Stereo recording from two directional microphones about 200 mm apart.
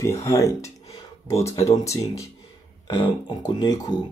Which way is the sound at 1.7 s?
15° left (ahead or behind).